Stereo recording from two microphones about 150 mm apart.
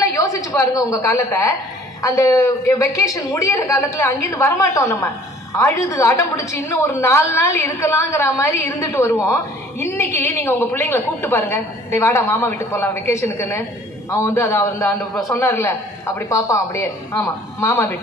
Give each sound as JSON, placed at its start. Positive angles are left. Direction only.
{"t": 0.0, "sound": "a woman's voice", "side_deg": 20}